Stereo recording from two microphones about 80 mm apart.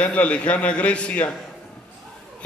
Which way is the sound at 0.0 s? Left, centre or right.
Centre.